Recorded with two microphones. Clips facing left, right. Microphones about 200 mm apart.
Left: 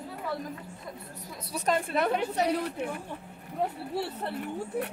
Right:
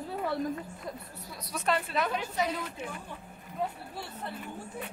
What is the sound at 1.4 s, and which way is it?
Speech, 35° left (ahead or behind).